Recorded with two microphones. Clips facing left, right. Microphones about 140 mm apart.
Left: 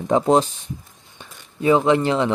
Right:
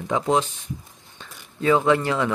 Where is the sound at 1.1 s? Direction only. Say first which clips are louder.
Left 1 dB; 20° left (ahead or behind).